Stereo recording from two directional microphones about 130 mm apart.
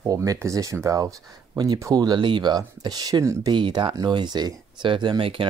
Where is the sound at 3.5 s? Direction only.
35° right (ahead or behind).